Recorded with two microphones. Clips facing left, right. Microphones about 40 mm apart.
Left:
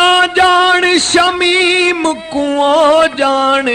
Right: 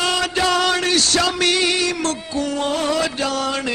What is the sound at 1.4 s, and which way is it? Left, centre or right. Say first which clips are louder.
Music: left 8 dB; left.